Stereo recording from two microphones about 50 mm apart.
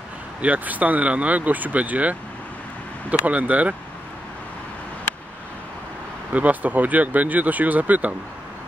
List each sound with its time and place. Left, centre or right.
0.4 s speech: right
3.3 s speech: right
6.3 s speech: right